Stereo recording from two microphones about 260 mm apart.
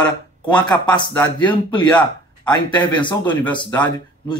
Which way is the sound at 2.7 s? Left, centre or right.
Centre.